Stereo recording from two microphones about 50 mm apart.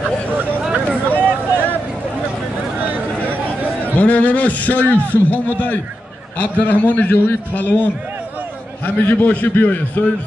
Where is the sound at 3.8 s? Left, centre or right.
Left.